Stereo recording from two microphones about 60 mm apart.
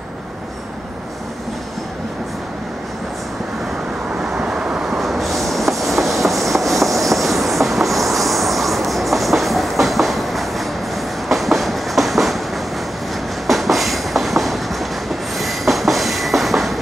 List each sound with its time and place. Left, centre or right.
4.2 s train: centre
13.5 s train: centre